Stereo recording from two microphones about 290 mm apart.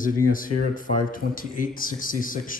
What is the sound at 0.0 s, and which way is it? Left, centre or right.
A man's voice, left.